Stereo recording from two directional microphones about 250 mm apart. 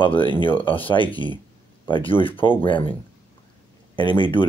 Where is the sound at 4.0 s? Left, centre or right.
Centre.